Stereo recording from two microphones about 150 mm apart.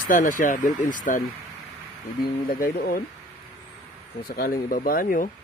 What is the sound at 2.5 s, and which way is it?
Speech, 70° left (ahead or behind).